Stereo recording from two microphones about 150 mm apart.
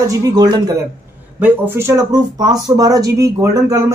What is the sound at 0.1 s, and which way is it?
Speech, 25° right (ahead or behind).